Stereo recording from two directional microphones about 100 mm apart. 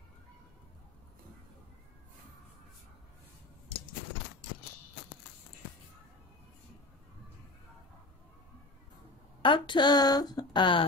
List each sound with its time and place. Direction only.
9.4 s speech: 55° left (ahead or behind)